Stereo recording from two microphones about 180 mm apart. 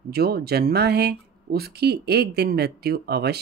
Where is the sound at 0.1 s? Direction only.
60° right (ahead or behind).